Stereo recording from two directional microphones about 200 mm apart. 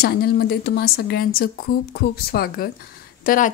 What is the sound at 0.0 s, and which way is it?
A woman's voice, 50° left (ahead or behind).